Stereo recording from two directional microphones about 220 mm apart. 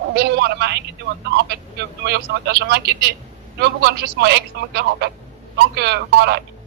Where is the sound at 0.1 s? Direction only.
45° right (ahead or behind).